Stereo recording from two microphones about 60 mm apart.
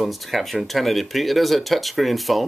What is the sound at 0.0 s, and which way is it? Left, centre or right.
Speech, centre.